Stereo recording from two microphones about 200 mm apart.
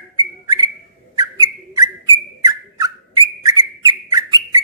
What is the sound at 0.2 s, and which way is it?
Bird, 20° right (ahead or behind).